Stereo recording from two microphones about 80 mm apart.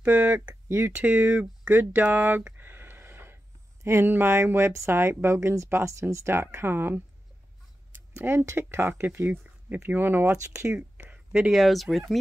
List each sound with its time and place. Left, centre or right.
0.0 s speech: centre
0.7 s speech: right
0.9 s speech: centre
1.6 s a sound: right
3.8 s speech: right
10.3 s speech: right
11.3 s speech: centre